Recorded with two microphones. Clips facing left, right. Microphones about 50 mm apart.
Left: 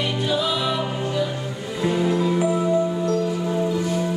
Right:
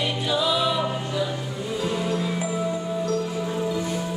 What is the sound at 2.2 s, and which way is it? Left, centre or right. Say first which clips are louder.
Music: left 6 dB; centre.